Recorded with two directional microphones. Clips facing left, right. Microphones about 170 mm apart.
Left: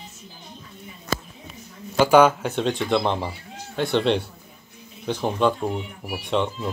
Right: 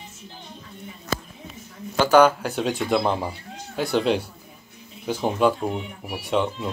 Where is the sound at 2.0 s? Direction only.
5° left (ahead or behind).